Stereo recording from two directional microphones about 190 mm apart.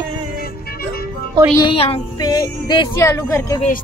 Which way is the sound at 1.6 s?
30° left (ahead or behind).